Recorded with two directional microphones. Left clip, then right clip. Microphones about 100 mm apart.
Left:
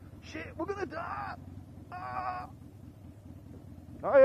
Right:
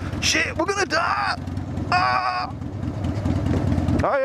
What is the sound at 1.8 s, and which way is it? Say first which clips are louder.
Vehicle: right 17 dB; 15° right (ahead or behind).